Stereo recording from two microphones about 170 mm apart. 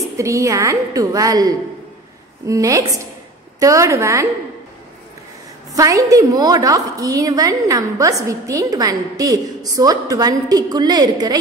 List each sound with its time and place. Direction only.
0.2 s a woman's voice: 20° right (ahead or behind)
5.8 s a woman's voice: 20° right (ahead or behind)